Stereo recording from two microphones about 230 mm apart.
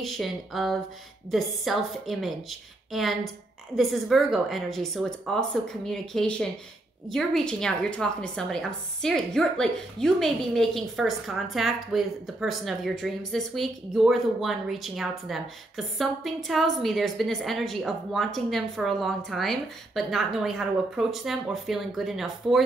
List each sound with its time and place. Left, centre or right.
0.0 s a woman's voice: centre